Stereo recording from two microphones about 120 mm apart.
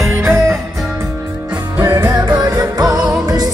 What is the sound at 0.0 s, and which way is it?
Music, 20° right (ahead or behind).